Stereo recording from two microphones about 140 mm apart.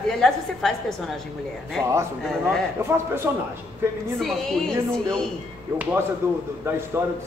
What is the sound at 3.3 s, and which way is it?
Speech, 15° right (ahead or behind).